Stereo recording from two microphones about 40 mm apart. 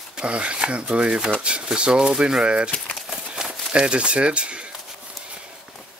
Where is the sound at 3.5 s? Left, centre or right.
Right.